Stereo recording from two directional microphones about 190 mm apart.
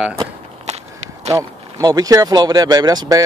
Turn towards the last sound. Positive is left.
turn(degrees=-20)  # may be behind; listen again after turning